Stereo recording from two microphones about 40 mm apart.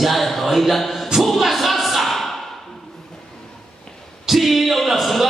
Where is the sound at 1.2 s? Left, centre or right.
Centre.